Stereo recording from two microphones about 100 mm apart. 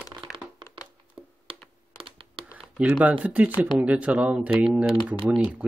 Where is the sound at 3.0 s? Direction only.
15° right (ahead or behind).